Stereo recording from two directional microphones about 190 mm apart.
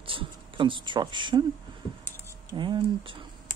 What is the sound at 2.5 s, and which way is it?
Speech, 25° right (ahead or behind).